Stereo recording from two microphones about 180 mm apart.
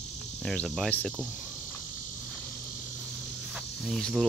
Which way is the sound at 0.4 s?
5° left (ahead or behind).